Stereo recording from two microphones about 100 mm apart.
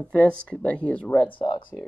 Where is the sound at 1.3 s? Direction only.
55° left (ahead or behind).